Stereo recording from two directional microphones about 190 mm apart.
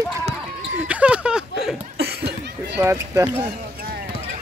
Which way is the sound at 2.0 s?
60° right (ahead or behind).